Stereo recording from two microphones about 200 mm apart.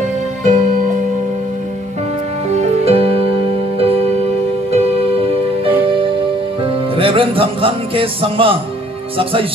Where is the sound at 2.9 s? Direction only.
30° right (ahead or behind).